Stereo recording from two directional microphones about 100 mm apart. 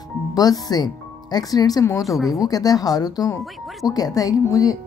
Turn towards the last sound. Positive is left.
turn(degrees=35)  # may be behind; listen again after turning